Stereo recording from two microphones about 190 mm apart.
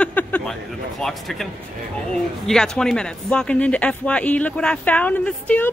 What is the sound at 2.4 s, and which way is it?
Female singing, 5° left (ahead or behind).